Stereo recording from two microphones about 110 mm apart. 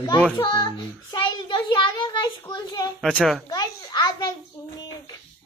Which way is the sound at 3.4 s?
40° left (ahead or behind).